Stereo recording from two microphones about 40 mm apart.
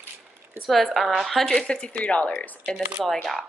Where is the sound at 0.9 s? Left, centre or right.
Centre.